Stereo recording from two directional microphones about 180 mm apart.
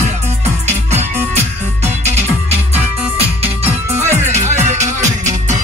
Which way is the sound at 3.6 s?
40° right (ahead or behind).